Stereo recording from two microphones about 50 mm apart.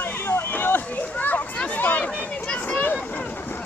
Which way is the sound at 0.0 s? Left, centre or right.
Left.